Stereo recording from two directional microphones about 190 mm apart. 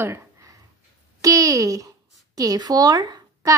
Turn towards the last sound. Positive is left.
turn(degrees=-20)  # may be behind; listen again after turning